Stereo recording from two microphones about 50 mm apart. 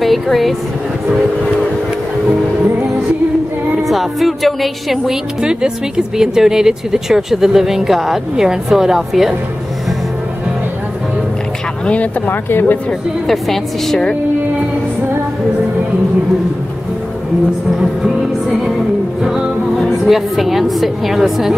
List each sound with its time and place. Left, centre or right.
0.0 s a woman's voice: centre
3.8 s a woman's voice: centre
5.4 s speech: centre
11.8 s speech: left
12.3 s speech: left
13.3 s a woman's voice: centre
20.1 s a woman's voice: centre